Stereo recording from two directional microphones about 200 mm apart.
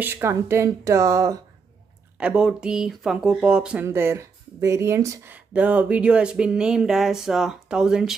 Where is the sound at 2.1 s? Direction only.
5° right (ahead or behind).